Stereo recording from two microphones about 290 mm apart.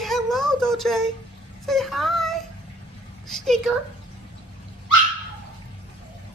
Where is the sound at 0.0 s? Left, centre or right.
Centre.